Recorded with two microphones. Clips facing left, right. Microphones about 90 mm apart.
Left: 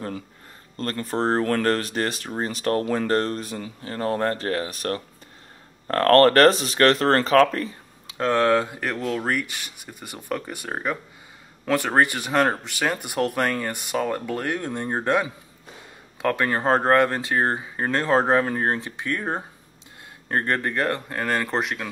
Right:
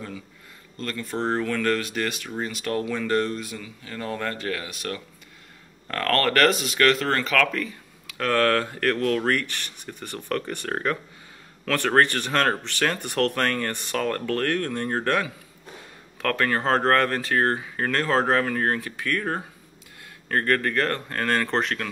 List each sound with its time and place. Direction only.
0.7 s speech: 40° left (ahead or behind); by 21.8 s 10° left (ahead or behind)